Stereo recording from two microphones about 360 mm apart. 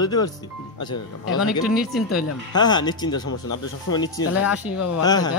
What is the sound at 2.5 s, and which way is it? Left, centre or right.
Speech, centre.